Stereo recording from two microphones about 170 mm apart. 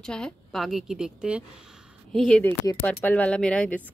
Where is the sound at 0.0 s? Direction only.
5° left (ahead or behind).